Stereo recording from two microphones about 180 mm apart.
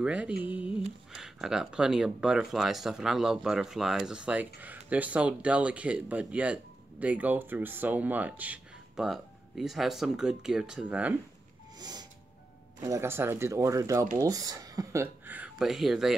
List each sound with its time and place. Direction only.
0.0 s speech: 5° right (ahead or behind)
11.8 s a sound: 20° right (ahead or behind)
12.8 s speech: 15° right (ahead or behind)